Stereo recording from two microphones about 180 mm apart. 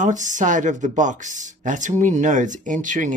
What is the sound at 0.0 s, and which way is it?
Speech, 45° right (ahead or behind).